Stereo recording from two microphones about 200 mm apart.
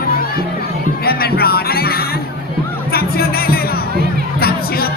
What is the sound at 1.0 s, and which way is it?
Music, 50° left (ahead or behind).